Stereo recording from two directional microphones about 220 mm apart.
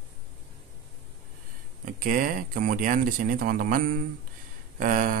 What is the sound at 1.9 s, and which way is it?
Speech, 40° right (ahead or behind).